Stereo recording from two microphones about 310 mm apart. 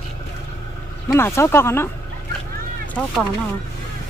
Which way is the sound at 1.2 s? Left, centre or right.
Centre.